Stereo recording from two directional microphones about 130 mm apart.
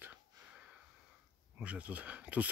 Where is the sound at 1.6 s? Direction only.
10° right (ahead or behind).